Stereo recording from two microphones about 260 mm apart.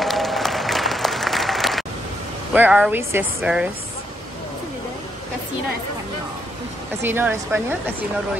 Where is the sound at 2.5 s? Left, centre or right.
Centre.